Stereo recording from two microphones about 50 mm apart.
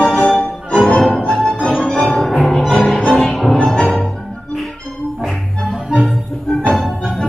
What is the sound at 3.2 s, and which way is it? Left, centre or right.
Music, centre.